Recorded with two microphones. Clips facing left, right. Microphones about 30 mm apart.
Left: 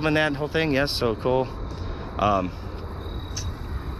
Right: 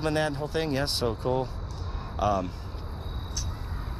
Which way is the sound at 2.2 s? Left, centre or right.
Left.